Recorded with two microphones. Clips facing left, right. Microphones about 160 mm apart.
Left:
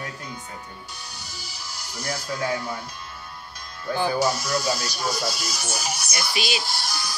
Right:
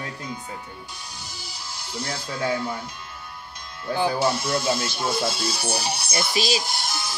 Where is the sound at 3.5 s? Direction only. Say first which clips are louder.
Right 1 dB; 20° right (ahead or behind).